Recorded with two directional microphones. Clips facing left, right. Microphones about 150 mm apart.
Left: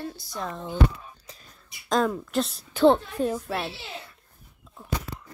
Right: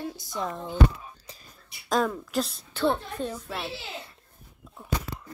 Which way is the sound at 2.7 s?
20° left (ahead or behind).